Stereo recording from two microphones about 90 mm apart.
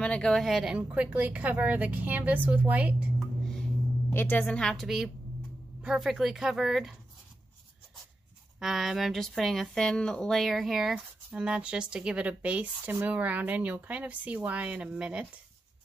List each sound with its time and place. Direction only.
0.0 s a woman's voice: 10° left (ahead or behind)
0.7 s speech: 15° right (ahead or behind)
4.1 s a woman's voice: 25° left (ahead or behind)
4.5 s a woman's voice: 5° left (ahead or behind)
8.5 s speech: 5° right (ahead or behind)